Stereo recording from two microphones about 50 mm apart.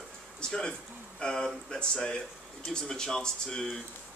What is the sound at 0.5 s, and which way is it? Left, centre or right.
Speech, centre.